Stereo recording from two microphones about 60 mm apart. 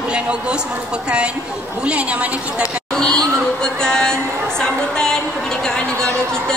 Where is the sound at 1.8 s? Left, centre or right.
Right.